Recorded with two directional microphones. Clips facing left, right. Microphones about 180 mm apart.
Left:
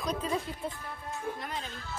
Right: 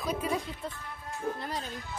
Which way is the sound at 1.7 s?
15° right (ahead or behind).